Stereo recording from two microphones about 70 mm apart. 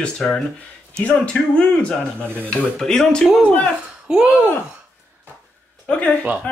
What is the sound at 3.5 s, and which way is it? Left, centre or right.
Speech, centre.